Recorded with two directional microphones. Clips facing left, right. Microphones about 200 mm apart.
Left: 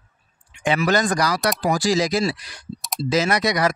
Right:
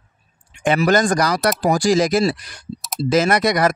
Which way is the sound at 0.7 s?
45° right (ahead or behind).